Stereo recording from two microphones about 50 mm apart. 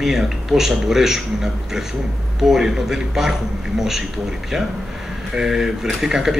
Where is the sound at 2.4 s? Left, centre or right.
Centre.